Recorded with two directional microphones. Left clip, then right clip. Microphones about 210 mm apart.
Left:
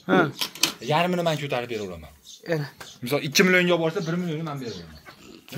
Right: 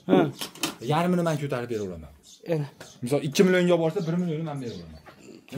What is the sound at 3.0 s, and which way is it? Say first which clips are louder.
Speech: left 1 dB; 25° right (ahead or behind).